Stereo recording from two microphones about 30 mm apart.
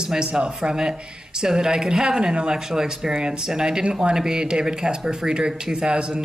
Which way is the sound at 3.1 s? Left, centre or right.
Right.